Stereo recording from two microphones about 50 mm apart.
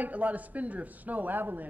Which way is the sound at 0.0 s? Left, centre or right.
Right.